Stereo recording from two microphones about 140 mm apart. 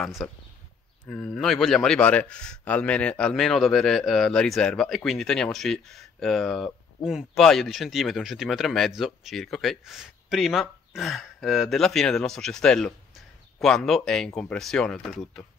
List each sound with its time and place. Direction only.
0.0 s a man's voice: 5° left (ahead or behind)